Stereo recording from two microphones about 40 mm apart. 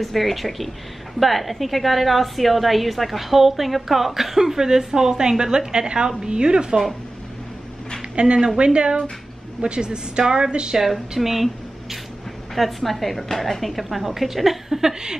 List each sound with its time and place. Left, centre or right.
0.0 s a woman's voice: centre; by 6.8 s right
8.2 s a woman's voice: right
10.8 s a woman's voice: centre